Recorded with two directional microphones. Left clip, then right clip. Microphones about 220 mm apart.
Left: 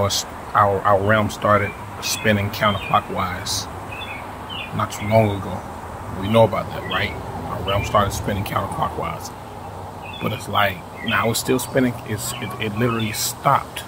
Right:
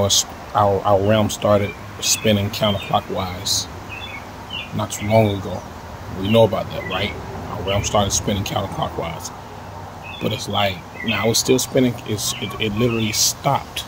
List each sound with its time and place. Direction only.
0.0 s speech: 15° right (ahead or behind)
4.7 s speech: 10° right (ahead or behind)
6.3 s speech: 15° right (ahead or behind)
10.2 s speech: 15° right (ahead or behind)